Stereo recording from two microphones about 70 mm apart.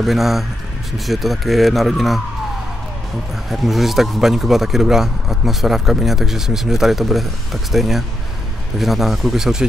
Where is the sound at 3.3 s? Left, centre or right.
Centre.